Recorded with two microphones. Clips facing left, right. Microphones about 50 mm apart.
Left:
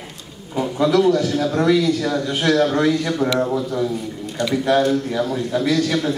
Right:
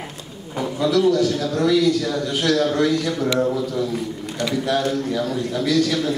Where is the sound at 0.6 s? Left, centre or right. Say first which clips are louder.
Left 2 dB; centre.